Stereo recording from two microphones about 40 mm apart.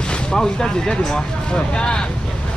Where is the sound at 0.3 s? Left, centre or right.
Centre.